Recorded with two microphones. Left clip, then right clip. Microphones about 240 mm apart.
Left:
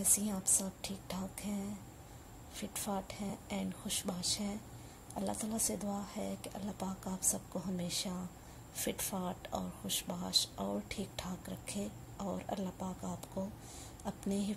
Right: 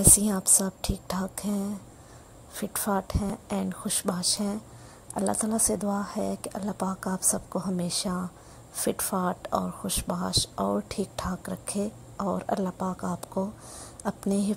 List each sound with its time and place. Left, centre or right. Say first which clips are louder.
0.3 s a woman's voice: right 10 dB; right